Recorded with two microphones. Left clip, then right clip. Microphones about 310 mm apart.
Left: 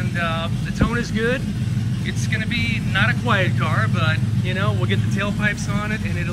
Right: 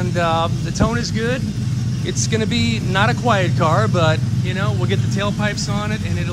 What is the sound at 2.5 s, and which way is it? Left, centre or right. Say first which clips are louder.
Speech: right 2 dB; centre.